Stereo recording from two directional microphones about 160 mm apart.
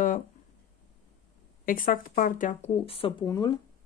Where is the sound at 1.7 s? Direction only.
60° left (ahead or behind).